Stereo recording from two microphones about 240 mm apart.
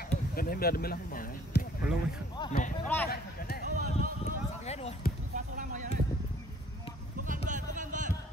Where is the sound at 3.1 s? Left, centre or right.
Left.